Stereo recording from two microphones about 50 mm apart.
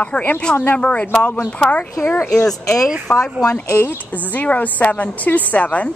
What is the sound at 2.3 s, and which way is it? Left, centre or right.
Speech, centre.